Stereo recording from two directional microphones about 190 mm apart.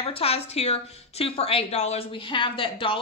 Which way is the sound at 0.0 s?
30° left (ahead or behind).